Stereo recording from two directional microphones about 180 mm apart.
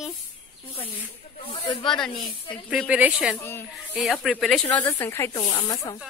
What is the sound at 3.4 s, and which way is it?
Speech, 10° left (ahead or behind).